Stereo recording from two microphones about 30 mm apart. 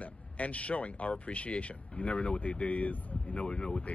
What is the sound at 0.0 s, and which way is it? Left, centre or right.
Speech, left.